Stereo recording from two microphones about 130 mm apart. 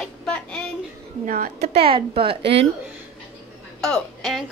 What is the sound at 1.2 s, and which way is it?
Speech, 85° right.